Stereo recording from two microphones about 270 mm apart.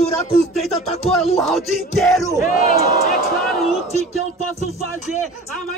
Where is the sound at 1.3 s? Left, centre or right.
Centre.